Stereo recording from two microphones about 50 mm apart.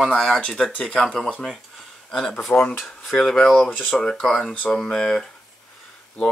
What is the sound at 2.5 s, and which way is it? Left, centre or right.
Speech, centre.